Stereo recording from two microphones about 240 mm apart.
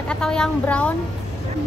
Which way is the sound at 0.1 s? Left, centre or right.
Centre.